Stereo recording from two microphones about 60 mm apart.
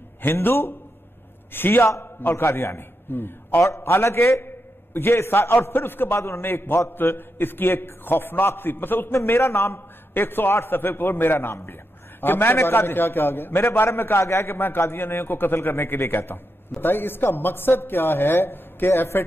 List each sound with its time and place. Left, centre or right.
0.2 s a man's voice: left